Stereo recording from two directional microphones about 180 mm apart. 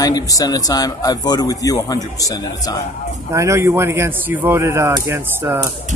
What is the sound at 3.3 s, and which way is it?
Speech, 15° right (ahead or behind).